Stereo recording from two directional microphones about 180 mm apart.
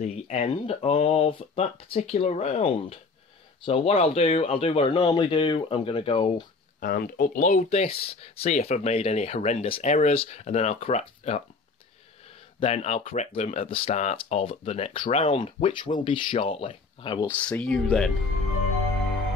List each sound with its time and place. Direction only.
0.0 s speech: 35° left (ahead or behind)
6.8 s speech: 55° left (ahead or behind); by 11.4 s 35° left (ahead or behind)
12.5 s speech: 35° left (ahead or behind)
17.3 s speech: 10° left (ahead or behind)